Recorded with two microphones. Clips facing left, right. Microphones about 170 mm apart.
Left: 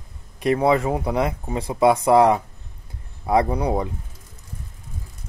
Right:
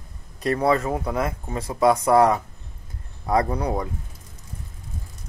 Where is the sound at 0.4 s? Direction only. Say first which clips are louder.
Left 2 dB; 15° left (ahead or behind).